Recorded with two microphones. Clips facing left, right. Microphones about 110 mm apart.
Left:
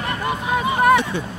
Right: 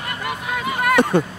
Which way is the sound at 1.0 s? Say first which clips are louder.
Right 8 dB; 50° right (ahead or behind).